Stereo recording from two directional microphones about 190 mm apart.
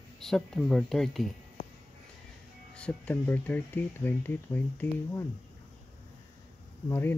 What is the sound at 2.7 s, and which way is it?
Speech, 5° left (ahead or behind).